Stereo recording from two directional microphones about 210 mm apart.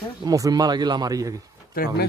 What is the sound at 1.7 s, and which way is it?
Speech, 45° left (ahead or behind).